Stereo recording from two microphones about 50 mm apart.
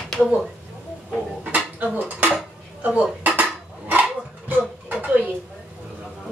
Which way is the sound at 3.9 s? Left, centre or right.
Right.